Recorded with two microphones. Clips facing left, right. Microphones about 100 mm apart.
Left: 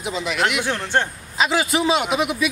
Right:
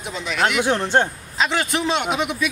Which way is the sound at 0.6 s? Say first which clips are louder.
Right 4 dB; 20° right (ahead or behind).